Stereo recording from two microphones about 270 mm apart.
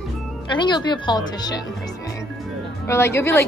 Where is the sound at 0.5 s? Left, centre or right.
Centre.